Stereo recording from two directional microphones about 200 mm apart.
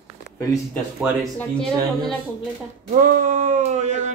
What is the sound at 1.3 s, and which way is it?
Speech, 5° left (ahead or behind).